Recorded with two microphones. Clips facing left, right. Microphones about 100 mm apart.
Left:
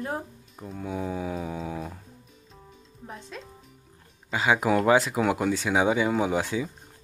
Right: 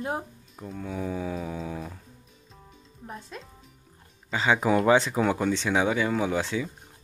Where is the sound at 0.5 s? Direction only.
Centre (ahead or behind).